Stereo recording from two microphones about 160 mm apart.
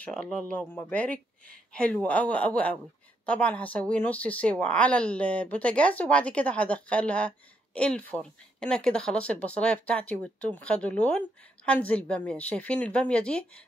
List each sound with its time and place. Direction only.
0.0 s speech: 5° left (ahead or behind)